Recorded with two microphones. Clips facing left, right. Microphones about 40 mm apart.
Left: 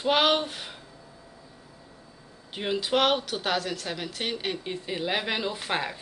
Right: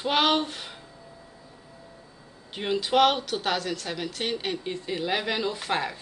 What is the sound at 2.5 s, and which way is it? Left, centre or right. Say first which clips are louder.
Speech: right 3 dB; centre.